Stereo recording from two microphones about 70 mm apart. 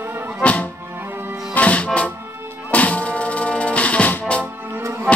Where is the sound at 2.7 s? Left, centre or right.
Centre.